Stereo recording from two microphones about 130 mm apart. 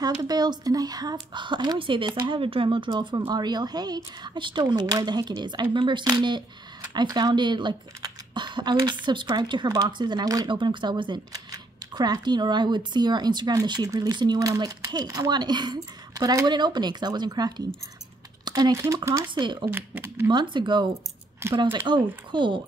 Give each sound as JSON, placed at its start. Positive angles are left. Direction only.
{"t": 0.0, "sound": "speech", "side_deg": -30}
{"t": 19.2, "sound": "speech", "side_deg": -35}
{"t": 19.7, "sound": "speech", "side_deg": -15}
{"t": 20.2, "sound": "speech", "side_deg": -35}
{"t": 21.4, "sound": "speech", "side_deg": -20}
{"t": 21.7, "sound": "speech", "side_deg": -35}